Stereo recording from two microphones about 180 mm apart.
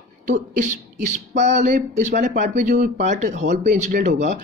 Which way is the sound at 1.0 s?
40° right (ahead or behind).